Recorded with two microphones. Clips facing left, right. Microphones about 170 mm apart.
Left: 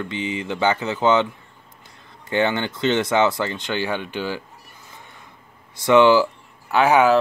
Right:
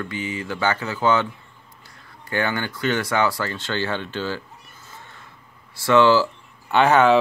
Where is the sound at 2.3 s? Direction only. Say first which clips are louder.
Left 4 dB; 20° left (ahead or behind).